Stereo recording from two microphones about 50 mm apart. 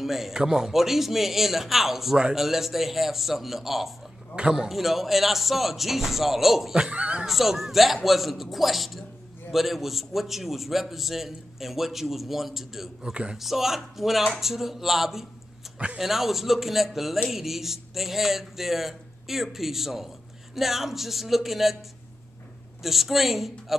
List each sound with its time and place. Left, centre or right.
0.0 s a man's voice: centre
6.7 s speech: right
7.2 s a man's voice: centre
13.1 s a man's voice: right
13.4 s a man's voice: centre
22.8 s a man's voice: centre